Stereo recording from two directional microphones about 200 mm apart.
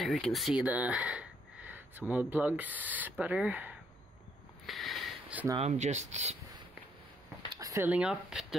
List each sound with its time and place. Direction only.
0.0 s speech: centre (ahead or behind)
4.6 s a sound: centre (ahead or behind)
5.6 s speech: 35° right (ahead or behind)
7.5 s speech: 10° right (ahead or behind)